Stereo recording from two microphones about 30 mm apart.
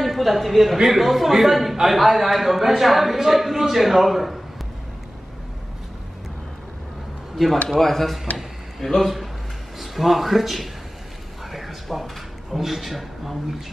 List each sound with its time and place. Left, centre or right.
0.0 s a man's voice: centre
7.4 s speech: centre
8.4 s a sound: centre
9.8 s a man's voice: centre
11.5 s a sound: centre
12.5 s a man's voice: centre